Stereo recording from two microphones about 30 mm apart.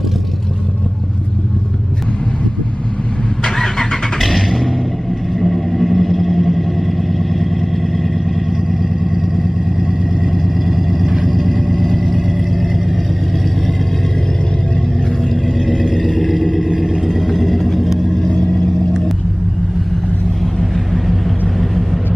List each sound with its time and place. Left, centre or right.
3.4 s vehicle: centre
4.2 s vehicle: centre
8.8 s vehicle: centre
15.4 s vehicle: centre
18.0 s vehicle: centre
20.7 s vehicle: centre